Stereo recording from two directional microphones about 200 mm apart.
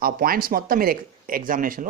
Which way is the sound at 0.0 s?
45° right (ahead or behind).